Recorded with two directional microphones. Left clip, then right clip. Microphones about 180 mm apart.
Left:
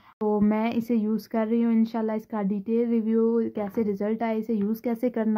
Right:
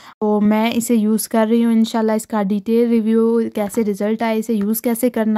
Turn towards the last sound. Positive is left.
turn(degrees=-35)  # may be behind; listen again after turning